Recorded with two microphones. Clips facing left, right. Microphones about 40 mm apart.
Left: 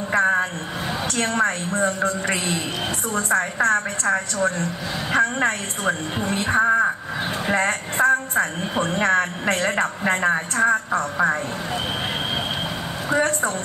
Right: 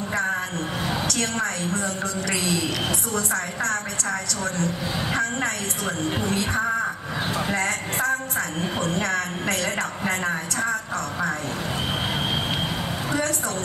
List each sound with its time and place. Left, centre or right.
0.1 s a sound: left
1.0 s a man's voice: left
13.1 s a man's voice: left